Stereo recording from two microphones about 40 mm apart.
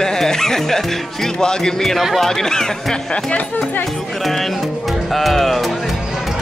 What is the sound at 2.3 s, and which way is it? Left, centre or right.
Speech, centre.